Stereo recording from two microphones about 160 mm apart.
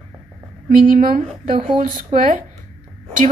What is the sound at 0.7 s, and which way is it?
Speech, 60° right (ahead or behind).